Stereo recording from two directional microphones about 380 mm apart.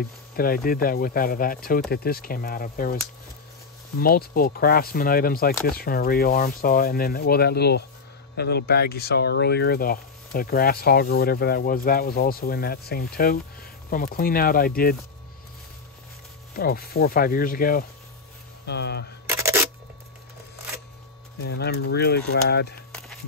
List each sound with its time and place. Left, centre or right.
0.4 s speech: left
4.0 s speech: left
16.5 s speech: left
19.2 s a sound: centre
21.4 s speech: left